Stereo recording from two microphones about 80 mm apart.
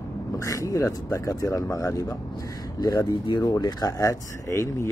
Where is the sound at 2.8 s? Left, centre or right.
Left.